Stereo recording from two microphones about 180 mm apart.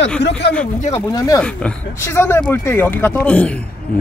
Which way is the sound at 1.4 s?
5° left (ahead or behind).